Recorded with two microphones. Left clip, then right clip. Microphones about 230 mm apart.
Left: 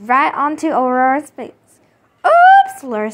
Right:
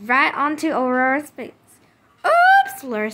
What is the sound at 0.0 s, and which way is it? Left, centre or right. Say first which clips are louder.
A woman's voice: left 4 dB; centre.